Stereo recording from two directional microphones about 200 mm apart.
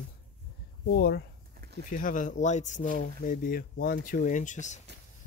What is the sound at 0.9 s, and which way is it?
Speech, 50° left (ahead or behind).